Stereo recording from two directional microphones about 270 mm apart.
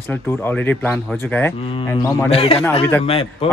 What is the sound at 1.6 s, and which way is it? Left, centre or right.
Speech, centre.